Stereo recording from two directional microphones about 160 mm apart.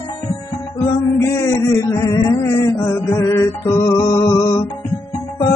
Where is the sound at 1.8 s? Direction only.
20° left (ahead or behind).